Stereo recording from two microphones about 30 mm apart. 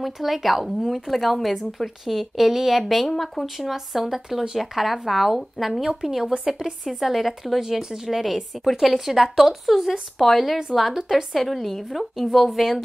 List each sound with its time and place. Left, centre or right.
0.0 s a woman's voice: centre
3.1 s speech: centre
3.4 s speech: centre
6.2 s speech: right
6.8 s a woman's voice: centre
7.8 s a woman's voice: centre